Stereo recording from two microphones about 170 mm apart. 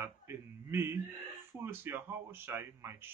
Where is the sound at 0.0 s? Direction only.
15° right (ahead or behind).